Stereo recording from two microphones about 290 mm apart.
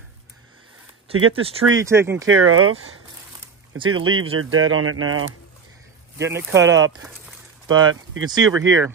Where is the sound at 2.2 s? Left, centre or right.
Right.